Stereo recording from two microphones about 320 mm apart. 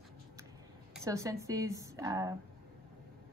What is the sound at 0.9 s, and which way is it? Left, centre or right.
A woman's voice, centre.